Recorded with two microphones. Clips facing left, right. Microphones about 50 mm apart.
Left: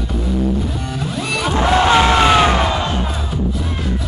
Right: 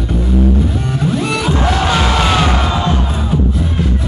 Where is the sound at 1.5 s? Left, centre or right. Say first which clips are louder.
Left 4 dB; left.